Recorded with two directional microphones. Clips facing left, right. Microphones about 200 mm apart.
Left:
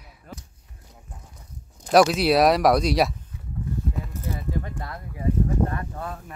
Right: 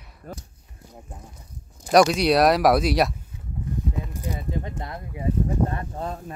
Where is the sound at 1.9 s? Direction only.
Centre (ahead or behind).